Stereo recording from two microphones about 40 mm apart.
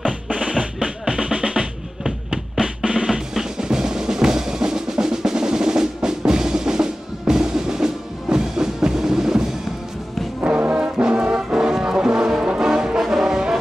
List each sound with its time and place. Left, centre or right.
0.3 s drum: centre
11.0 s brass instrument: right
11.5 s music: centre
13.0 s brass instrument: centre